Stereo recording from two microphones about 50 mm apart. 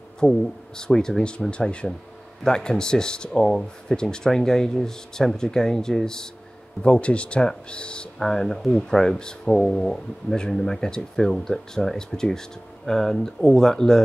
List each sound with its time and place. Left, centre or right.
0.2 s speech: centre
6.8 s speech: left